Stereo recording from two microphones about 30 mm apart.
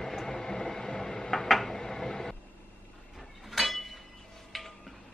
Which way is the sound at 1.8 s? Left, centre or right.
Centre.